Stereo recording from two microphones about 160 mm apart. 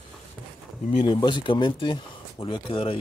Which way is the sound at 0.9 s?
30° left (ahead or behind).